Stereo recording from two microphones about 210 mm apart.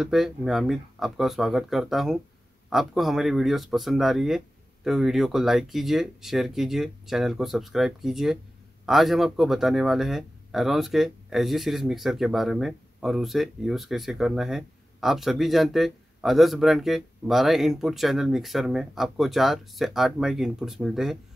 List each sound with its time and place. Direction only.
0.0 s speech: centre (ahead or behind)